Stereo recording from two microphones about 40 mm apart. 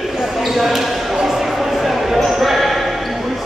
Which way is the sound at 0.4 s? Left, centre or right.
Centre.